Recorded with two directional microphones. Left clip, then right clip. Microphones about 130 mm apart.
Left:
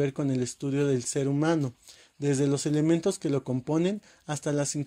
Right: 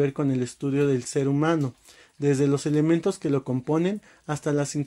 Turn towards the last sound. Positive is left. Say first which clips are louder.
# right 3 dB
turn(degrees=30)  # may be behind; listen again after turning